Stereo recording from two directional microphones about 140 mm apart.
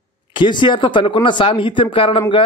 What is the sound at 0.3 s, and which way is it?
Speech, 35° left (ahead or behind).